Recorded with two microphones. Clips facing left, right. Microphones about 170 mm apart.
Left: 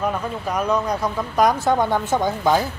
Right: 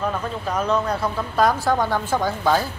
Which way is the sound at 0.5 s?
10° left (ahead or behind).